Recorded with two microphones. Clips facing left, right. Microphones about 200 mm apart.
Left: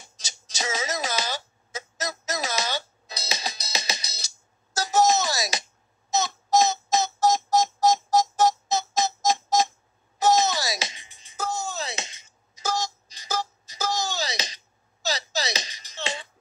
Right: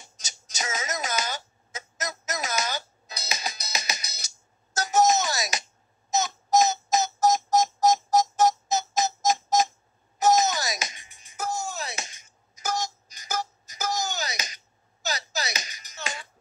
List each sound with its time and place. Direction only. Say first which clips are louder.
0.2 s music: left 2 dB; 30° left (ahead or behind)
4.7 s a sound: even; 35° left (ahead or behind)
10.1 s music: even; 30° left (ahead or behind)